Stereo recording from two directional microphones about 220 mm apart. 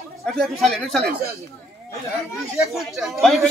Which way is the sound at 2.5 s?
Centre (ahead or behind).